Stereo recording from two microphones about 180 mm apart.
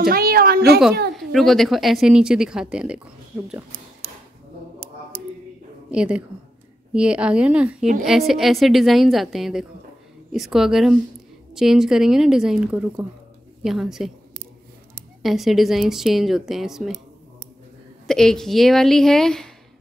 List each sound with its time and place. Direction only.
0.1 s a woman's voice: 55° right (ahead or behind)
1.1 s a woman's voice: centre (ahead or behind)
5.9 s a woman's voice: 5° right (ahead or behind)
15.2 s a woman's voice: centre (ahead or behind)
18.0 s a woman's voice: 5° left (ahead or behind)